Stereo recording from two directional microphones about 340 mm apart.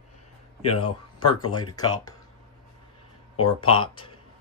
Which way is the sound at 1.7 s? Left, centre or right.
Centre.